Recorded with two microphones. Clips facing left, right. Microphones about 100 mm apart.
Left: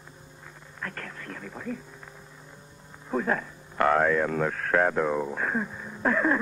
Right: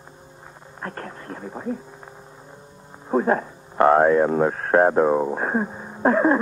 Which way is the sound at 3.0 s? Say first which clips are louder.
Right 7 dB; 35° right (ahead or behind).